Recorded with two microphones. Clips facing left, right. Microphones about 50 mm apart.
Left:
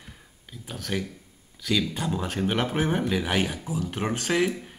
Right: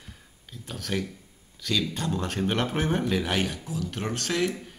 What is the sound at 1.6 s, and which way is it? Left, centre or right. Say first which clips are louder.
Speech: left 2 dB; centre.